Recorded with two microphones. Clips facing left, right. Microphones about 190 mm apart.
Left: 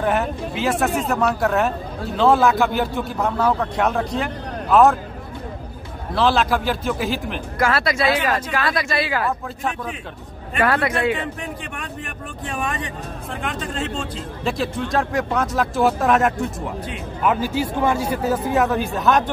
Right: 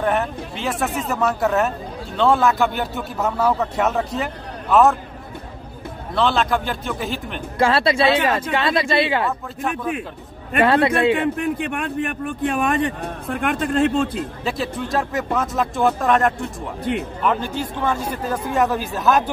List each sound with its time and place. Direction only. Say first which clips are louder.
0.0 s a man's voice: even; centre (ahead or behind)
6.1 s a man's voice: left 1 dB; centre (ahead or behind)
7.5 s speech: right 3 dB; 30° right (ahead or behind)
10.6 s speech: right 3 dB; 25° right (ahead or behind)
11.1 s a man's voice: right 8 dB; 55° right (ahead or behind)
14.4 s a man's voice: left 4 dB; centre (ahead or behind)